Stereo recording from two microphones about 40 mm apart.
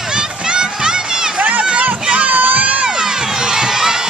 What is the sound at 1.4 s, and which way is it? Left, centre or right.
Crowd, right.